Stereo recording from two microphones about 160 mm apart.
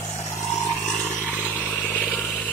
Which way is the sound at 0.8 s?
5° left (ahead or behind).